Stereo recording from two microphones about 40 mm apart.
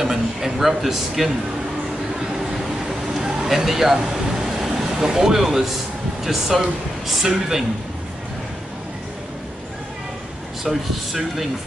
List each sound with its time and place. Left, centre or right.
0.0 s a man's voice: centre
2.1 s vehicle: centre
6.2 s speech: centre
10.6 s speech: centre